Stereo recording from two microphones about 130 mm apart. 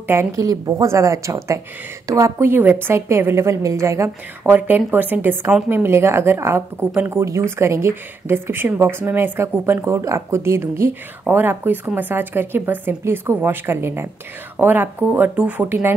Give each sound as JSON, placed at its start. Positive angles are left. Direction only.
{"t": 0.0, "sound": "a woman's voice", "side_deg": -20}